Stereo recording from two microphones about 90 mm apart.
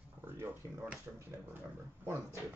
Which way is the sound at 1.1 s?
20° right (ahead or behind).